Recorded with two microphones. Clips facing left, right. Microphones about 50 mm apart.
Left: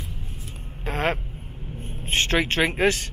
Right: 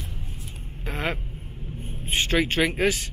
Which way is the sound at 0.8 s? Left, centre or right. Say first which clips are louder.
Left 4 dB; left.